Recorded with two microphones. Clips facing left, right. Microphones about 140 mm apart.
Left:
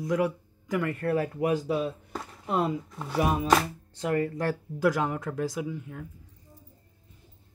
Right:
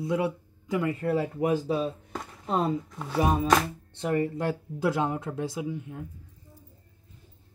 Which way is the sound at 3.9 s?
25° right (ahead or behind).